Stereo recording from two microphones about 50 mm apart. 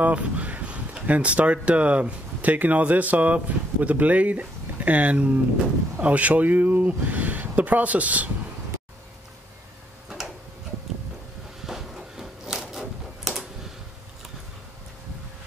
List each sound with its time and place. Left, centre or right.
0.0 s speech: right
10.0 s tick-tock: centre
11.6 s a sound: centre